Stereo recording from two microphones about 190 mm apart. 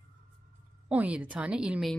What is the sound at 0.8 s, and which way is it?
Speech, 5° right (ahead or behind).